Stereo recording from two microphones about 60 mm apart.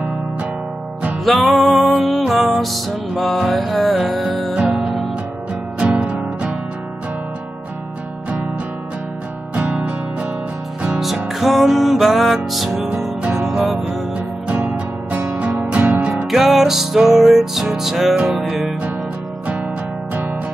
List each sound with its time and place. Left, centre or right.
1.2 s music: centre
5.9 s music: right
9.6 s music: centre
11.2 s music: centre
15.7 s music: right
16.3 s music: centre